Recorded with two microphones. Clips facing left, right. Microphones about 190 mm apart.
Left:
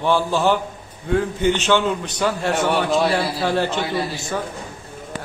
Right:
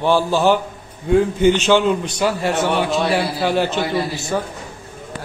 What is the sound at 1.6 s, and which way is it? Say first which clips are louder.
A man's voice: right 4 dB; 10° right (ahead or behind).